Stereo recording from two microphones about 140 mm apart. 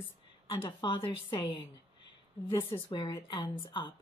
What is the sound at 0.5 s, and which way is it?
Speech, 35° left (ahead or behind).